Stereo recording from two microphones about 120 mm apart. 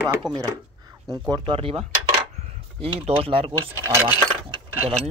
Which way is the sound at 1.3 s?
45° right (ahead or behind).